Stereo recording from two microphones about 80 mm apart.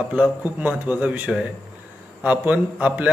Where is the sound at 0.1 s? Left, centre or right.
Centre.